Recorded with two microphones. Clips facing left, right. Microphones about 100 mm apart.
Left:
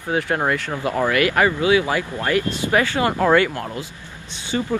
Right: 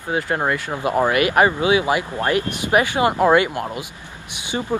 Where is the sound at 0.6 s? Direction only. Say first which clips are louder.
Right 2 dB; 20° right (ahead or behind).